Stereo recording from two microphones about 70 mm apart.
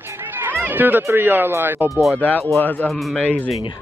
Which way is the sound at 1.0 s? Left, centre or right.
Right.